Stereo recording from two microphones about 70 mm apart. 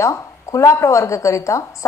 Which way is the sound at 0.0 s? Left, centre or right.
Left.